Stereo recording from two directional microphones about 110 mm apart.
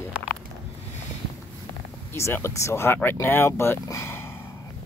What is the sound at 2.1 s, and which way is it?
Speech, 25° left (ahead or behind).